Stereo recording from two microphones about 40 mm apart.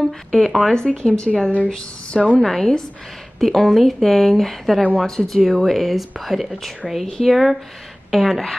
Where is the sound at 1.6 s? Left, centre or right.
Centre.